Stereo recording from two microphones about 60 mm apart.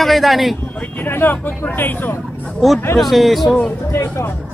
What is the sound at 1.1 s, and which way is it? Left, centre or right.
Speech, left.